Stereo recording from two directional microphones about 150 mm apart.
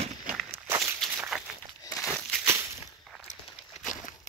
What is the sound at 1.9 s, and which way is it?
Crumpling, centre (ahead or behind).